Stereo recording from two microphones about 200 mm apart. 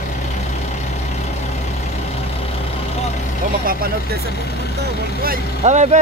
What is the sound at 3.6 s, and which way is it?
Speech, 45° right (ahead or behind).